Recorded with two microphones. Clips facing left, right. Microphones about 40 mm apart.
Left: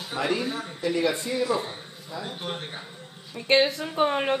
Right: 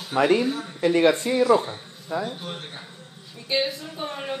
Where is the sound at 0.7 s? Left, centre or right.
Right.